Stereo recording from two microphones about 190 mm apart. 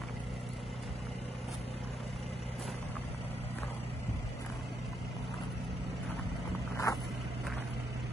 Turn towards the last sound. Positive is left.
turn(degrees=20)  # may be behind; listen again after turning